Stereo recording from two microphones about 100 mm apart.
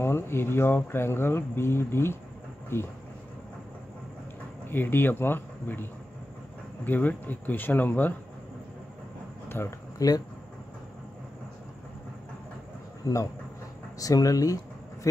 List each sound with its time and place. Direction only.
0.0 s speech: 25° left (ahead or behind)
4.6 s speech: 20° left (ahead or behind)
9.5 s speech: 25° left (ahead or behind)
9.9 s speech: 40° left (ahead or behind)
13.0 s speech: 35° left (ahead or behind)